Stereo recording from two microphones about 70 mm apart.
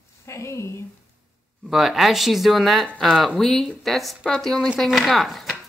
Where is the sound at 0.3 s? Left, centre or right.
Left.